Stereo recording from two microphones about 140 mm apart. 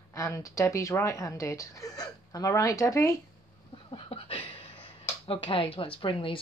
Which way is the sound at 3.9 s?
40° left (ahead or behind).